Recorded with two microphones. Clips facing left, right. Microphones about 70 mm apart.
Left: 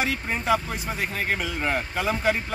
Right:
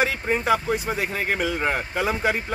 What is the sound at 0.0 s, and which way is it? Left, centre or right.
Speech, right.